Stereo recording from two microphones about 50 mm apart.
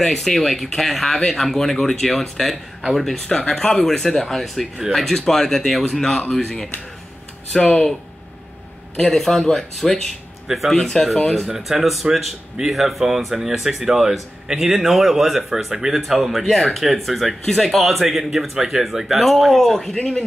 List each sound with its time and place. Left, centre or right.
0.0 s speech: centre
8.9 s speech: centre
11.4 s speech: centre
20.0 s speech: left